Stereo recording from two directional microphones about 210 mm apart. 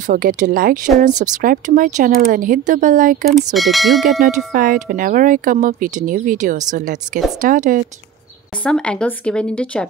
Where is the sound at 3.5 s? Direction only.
Centre (ahead or behind).